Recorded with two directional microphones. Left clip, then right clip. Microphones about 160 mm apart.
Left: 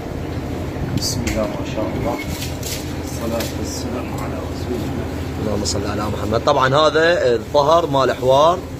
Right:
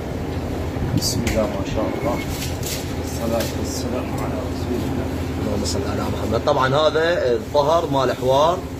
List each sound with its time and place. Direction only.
6.3 s a man's voice: 35° left (ahead or behind)